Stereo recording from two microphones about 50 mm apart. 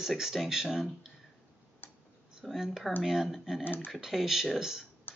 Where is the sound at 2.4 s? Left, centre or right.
Centre.